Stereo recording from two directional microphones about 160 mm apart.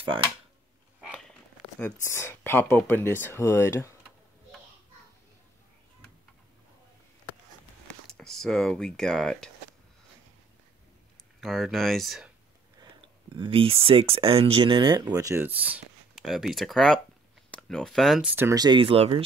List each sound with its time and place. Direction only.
1.8 s speech: 15° left (ahead or behind)
8.2 s speech: 5° left (ahead or behind)
11.4 s speech: centre (ahead or behind)
13.3 s speech: 30° right (ahead or behind); by 18.3 s centre (ahead or behind)
18.3 s speech: 15° right (ahead or behind)
18.6 s speech: 30° right (ahead or behind)